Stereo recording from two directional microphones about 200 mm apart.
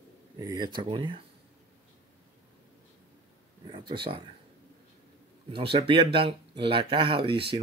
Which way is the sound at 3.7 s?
25° right (ahead or behind).